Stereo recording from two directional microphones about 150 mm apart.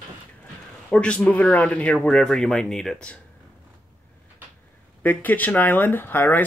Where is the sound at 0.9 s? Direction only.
5° left (ahead or behind).